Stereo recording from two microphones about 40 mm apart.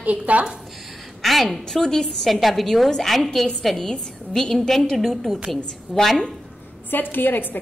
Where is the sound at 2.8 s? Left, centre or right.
Centre.